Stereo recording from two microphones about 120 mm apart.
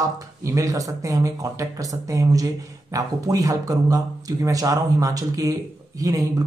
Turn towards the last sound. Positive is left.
turn(degrees=-30)  # may be behind; listen again after turning